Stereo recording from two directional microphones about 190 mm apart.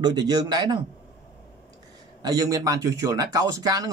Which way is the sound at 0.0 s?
20° right (ahead or behind).